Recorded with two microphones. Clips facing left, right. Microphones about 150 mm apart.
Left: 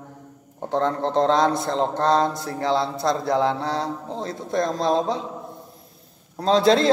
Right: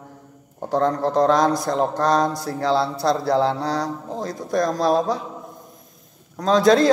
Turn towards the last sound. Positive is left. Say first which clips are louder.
# right 2 dB
turn(degrees=25)  # may be behind; listen again after turning